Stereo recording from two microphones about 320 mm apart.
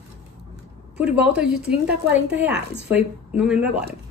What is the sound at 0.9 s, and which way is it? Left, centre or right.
Speech, centre.